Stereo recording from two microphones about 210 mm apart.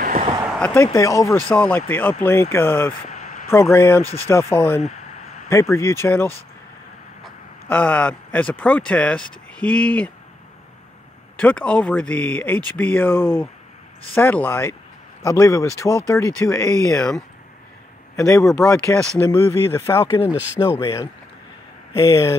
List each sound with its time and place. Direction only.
0.0 s a sound: 40° right (ahead or behind)
0.5 s a sound: 5° left (ahead or behind)
0.9 s speech: 15° left (ahead or behind)
3.1 s a sound: 35° left (ahead or behind)
3.7 s speech: 10° left (ahead or behind)
7.6 s speech: 10° left (ahead or behind)
11.3 s speech: 5° left (ahead or behind)
20.3 s speech: 10° right (ahead or behind)
20.8 s speech: 20° left (ahead or behind)